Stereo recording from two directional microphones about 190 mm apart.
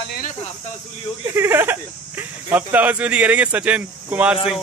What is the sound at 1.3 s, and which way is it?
Speech, 10° right (ahead or behind).